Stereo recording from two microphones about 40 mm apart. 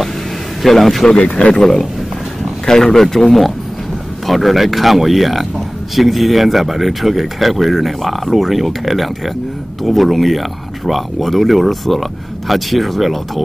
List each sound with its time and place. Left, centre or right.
0.6 s a man's voice: centre
1.0 s speech: left
1.5 s speech: centre